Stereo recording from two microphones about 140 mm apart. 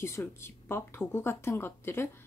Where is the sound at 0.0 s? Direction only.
15° left (ahead or behind).